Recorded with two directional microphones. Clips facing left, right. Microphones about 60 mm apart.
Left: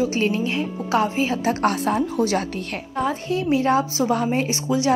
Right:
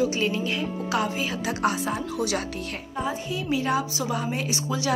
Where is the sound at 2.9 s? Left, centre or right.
Left.